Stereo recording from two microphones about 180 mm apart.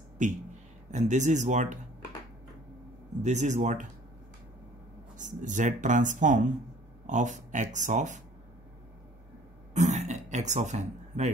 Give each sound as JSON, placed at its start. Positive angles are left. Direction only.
{"t": 0.2, "sound": "speech", "side_deg": -45}
{"t": 3.2, "sound": "speech", "side_deg": -40}
{"t": 5.1, "sound": "speech", "side_deg": -45}
{"t": 9.8, "sound": "throat clearing", "side_deg": -40}